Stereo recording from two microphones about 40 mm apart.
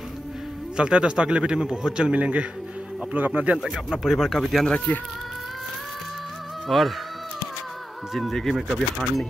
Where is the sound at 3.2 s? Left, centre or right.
Right.